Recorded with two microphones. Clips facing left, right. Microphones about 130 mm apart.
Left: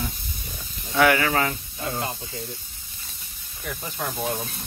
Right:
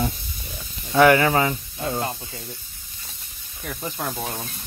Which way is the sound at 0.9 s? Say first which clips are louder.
Right 4 dB; 25° right (ahead or behind).